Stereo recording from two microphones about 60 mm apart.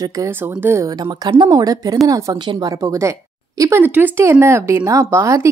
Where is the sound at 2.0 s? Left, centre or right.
Right.